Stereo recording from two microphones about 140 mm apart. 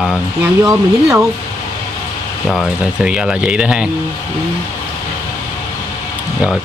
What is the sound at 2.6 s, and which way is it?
Speech, 5° right (ahead or behind).